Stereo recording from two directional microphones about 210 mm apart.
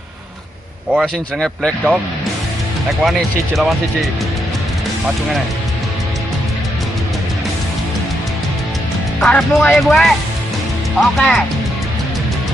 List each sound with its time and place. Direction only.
0.9 s speech: centre (ahead or behind)
3.0 s speech: centre (ahead or behind)
9.2 s speech: 5° left (ahead or behind)